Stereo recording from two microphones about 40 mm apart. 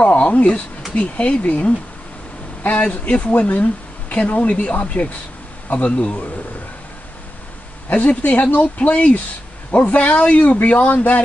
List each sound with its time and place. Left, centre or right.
0.0 s a sound: left
0.9 s speech: left
7.9 s speech: left